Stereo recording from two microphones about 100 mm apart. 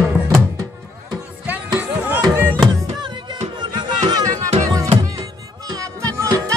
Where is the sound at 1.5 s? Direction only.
15° right (ahead or behind).